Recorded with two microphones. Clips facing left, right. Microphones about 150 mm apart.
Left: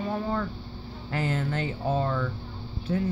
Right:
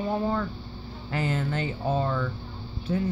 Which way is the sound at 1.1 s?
15° right (ahead or behind).